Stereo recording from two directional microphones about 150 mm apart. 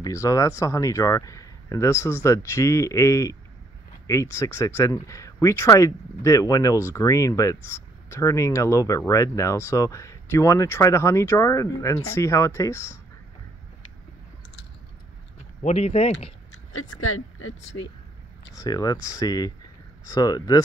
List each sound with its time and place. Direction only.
0.0 s speech: 20° left (ahead or behind)
15.6 s speech: 45° left (ahead or behind)
18.6 s speech: 25° left (ahead or behind)